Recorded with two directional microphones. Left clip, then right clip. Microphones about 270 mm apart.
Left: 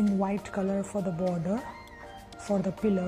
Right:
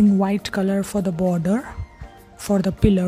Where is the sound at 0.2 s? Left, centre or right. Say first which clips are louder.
Right 8 dB; right.